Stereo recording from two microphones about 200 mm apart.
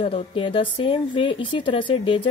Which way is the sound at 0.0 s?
25° left (ahead or behind).